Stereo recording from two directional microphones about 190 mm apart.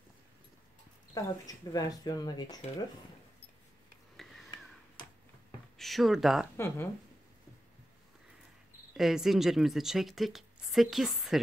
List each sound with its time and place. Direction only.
1.1 s speech: 20° left (ahead or behind)
5.8 s speech: centre (ahead or behind)
6.5 s speech: 15° left (ahead or behind)
8.9 s speech: centre (ahead or behind)